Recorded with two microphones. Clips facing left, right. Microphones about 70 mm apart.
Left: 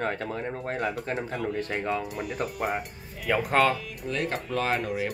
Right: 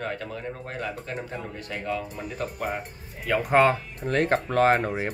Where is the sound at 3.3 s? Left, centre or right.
Centre.